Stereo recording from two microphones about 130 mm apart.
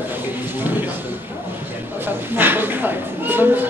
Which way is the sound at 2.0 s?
15° right (ahead or behind).